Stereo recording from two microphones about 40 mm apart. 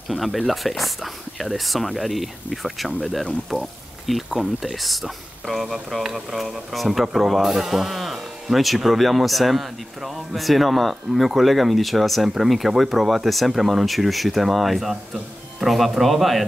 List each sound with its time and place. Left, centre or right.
0.1 s speech: centre